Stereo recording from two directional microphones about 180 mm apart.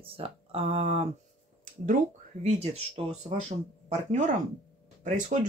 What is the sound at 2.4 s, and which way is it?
Speech, 35° right (ahead or behind).